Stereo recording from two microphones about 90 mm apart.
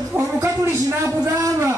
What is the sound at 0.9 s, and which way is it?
Speech, 30° right (ahead or behind).